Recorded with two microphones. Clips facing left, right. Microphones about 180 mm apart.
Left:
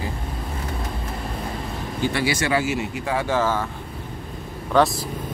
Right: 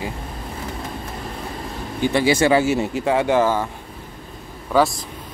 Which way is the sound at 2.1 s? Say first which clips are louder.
Right 8 dB; 25° right (ahead or behind).